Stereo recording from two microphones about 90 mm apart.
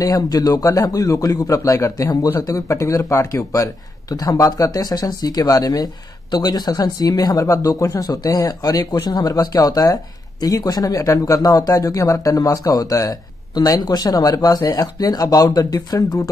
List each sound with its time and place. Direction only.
0.0 s speech: 45° left (ahead or behind)